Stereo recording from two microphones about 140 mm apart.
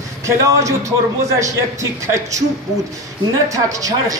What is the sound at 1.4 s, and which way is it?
Speech, 20° right (ahead or behind).